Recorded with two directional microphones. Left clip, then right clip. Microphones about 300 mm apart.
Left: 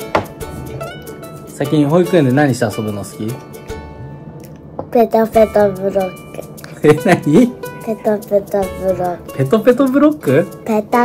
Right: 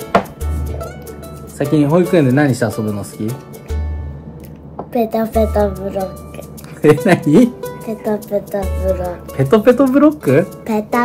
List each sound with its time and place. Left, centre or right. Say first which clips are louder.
1.8 s speech: left 1 dB; centre
4.9 s a woman's voice: left 5 dB; centre
6.8 s speech: even; centre
8.1 s a woman's voice: left 4 dB; centre
8.7 s speech: left 2 dB; centre
10.6 s speech: left 3 dB; centre